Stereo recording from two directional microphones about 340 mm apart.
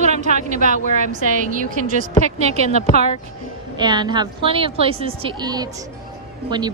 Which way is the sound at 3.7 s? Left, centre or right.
Centre.